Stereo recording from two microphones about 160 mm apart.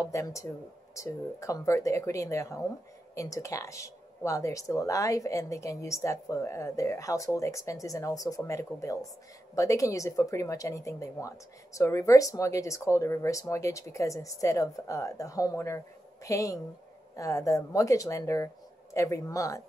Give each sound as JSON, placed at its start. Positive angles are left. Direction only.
{"t": 0.1, "sound": "speech", "side_deg": 20}